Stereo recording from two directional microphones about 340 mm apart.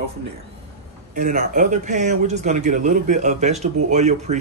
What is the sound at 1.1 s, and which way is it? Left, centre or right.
Speech, right.